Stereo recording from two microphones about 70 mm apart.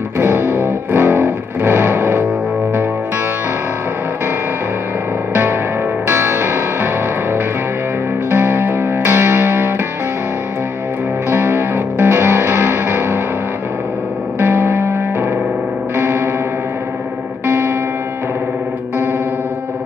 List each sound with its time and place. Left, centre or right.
0.2 s music: right
5.3 s music: right
8.3 s music: right
11.2 s music: right
14.4 s music: right
17.5 s music: right